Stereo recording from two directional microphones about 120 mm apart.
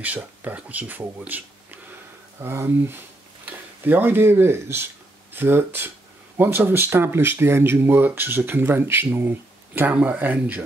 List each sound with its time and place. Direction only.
0.0 s speech: 15° right (ahead or behind)